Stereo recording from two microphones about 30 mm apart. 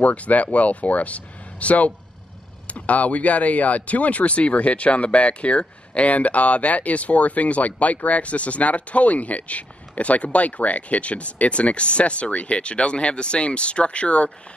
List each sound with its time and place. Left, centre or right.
0.0 s speech: left